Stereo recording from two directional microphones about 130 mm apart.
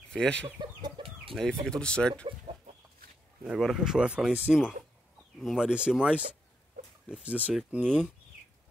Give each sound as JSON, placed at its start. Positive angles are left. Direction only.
{"t": 0.1, "sound": "speech", "side_deg": 5}
{"t": 0.6, "sound": "chicken", "side_deg": -35}
{"t": 1.3, "sound": "speech", "side_deg": 0}
{"t": 2.2, "sound": "chicken", "side_deg": -50}
{"t": 3.4, "sound": "speech", "side_deg": 0}